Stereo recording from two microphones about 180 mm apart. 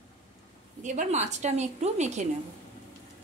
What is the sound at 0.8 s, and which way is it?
A woman's voice, 40° right (ahead or behind).